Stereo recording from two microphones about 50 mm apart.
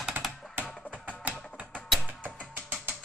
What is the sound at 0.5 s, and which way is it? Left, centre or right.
Music, right.